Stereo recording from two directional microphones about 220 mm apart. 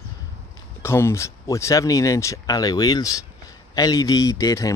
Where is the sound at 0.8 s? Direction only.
10° left (ahead or behind).